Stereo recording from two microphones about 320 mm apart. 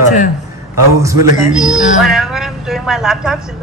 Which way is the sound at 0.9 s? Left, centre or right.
Centre.